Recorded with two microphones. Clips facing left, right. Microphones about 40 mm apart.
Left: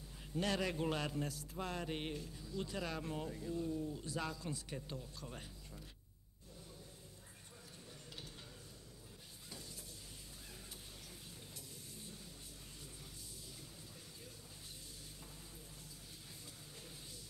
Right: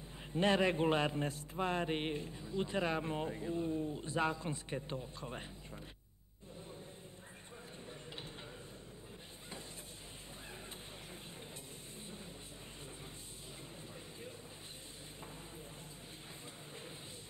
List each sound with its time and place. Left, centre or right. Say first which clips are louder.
0.3 s a man's voice: right 7 dB; right